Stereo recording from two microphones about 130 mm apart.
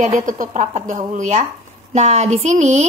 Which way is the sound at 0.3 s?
70° right (ahead or behind).